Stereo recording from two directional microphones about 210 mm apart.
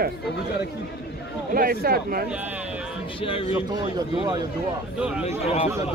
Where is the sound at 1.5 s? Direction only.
45° right (ahead or behind).